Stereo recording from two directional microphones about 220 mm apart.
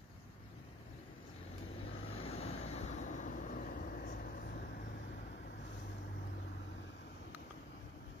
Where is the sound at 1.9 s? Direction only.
25° left (ahead or behind); by 5.5 s 45° left (ahead or behind).